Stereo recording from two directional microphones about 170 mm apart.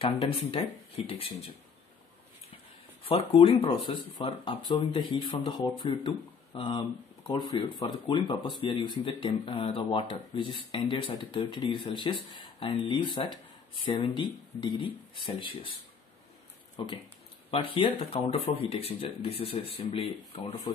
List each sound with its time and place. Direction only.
0.0 s speech: 35° left (ahead or behind)
3.0 s speech: 35° left (ahead or behind)
16.7 s speech: 25° left (ahead or behind)